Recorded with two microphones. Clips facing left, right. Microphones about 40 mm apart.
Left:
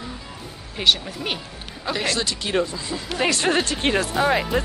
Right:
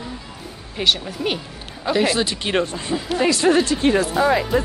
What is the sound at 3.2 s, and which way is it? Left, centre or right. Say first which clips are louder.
Speech: right 4 dB; left.